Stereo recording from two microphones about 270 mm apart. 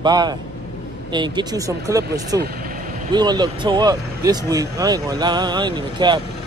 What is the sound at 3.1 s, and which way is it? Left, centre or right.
Speech, centre.